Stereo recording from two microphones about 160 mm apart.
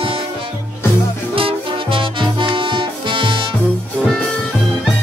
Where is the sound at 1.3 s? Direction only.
35° right (ahead or behind).